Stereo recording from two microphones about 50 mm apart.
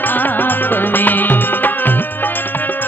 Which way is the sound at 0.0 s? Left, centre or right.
Left.